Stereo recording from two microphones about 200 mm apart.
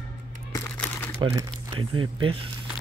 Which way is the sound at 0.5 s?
10° left (ahead or behind).